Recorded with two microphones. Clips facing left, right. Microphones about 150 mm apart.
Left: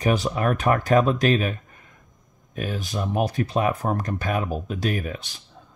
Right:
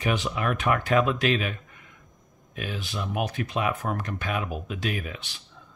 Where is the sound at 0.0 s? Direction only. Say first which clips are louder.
Left 5 dB; 40° left (ahead or behind).